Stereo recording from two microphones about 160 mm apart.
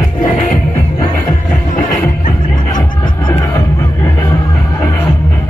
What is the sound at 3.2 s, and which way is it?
Music, 25° left (ahead or behind).